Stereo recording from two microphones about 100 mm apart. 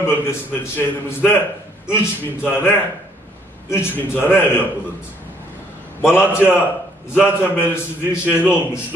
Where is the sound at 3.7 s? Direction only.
20° left (ahead or behind).